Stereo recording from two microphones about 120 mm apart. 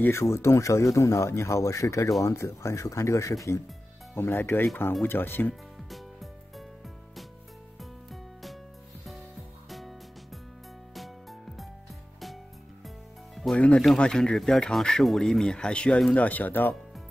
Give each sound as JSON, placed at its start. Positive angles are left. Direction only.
{"t": 0.0, "sound": "speech", "side_deg": 20}
{"t": 5.5, "sound": "music", "side_deg": 0}
{"t": 7.8, "sound": "music", "side_deg": 0}
{"t": 9.7, "sound": "music", "side_deg": 0}
{"t": 12.8, "sound": "speech", "side_deg": 0}